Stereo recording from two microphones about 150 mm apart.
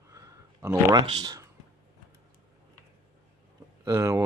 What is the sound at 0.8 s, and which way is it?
Speech, 30° right (ahead or behind).